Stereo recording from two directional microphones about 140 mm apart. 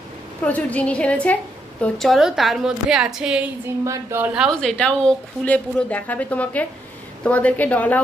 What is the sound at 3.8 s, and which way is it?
Speech, 20° right (ahead or behind).